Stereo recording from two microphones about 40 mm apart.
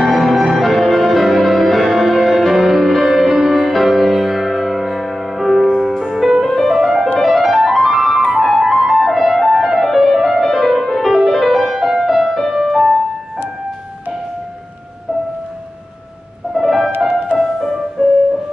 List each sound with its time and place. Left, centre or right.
0.0 s music: centre
16.5 s music: centre
18.0 s music: centre